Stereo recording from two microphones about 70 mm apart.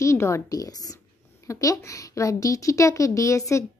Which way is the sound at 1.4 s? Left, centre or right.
Left.